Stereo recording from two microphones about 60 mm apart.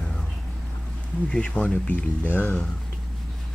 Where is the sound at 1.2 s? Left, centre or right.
Centre.